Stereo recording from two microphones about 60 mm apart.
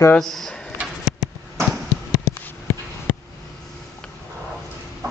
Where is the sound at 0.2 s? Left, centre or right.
Centre.